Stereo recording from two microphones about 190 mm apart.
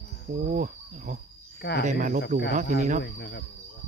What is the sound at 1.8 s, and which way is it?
Speech, 45° right (ahead or behind).